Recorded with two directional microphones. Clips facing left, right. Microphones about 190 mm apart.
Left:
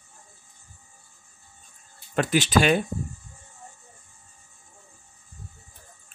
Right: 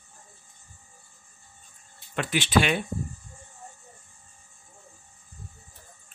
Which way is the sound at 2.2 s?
40° left (ahead or behind).